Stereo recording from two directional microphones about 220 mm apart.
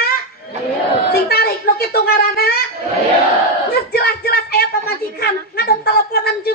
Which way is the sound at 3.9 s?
45° left (ahead or behind).